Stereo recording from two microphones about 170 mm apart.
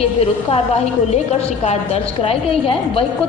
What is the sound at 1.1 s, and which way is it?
A woman's voice, 35° left (ahead or behind).